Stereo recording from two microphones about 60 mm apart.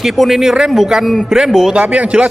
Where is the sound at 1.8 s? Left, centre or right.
Centre.